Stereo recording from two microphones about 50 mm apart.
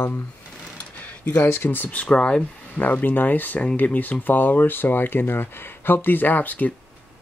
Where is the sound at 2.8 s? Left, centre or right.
Left.